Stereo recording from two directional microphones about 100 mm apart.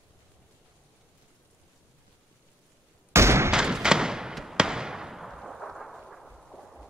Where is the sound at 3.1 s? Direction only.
25° right (ahead or behind).